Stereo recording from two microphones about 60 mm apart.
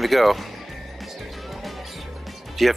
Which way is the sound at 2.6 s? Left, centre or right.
Centre.